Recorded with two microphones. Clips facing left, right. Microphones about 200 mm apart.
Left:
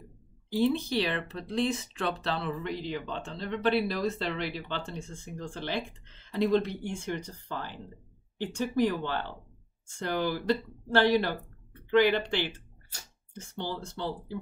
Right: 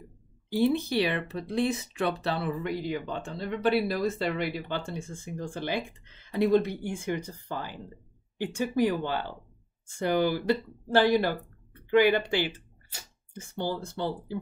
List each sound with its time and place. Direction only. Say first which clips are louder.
0.6 s speech: right 2 dB; 10° right (ahead or behind)
6.7 s speech: right 2 dB; 55° right (ahead or behind)
7.2 s speech: right 2 dB; 10° right (ahead or behind)